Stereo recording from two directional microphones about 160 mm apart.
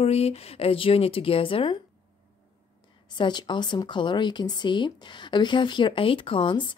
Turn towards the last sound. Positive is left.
turn(degrees=30)  # may be behind; listen again after turning